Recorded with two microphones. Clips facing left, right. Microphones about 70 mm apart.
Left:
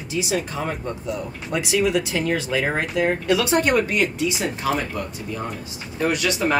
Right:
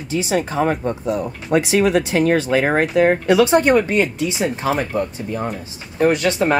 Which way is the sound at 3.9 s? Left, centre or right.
Right.